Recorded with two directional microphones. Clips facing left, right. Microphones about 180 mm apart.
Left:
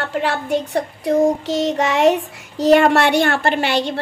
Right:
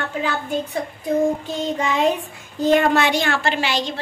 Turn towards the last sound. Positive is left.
turn(degrees=60)  # may be behind; listen again after turning